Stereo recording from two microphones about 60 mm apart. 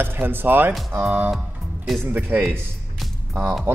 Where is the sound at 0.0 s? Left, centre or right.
Right.